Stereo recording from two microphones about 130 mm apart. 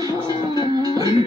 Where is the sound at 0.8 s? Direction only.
30° right (ahead or behind).